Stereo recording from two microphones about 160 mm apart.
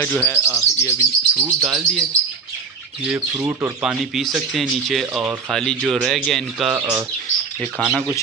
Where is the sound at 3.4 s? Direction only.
15° right (ahead or behind).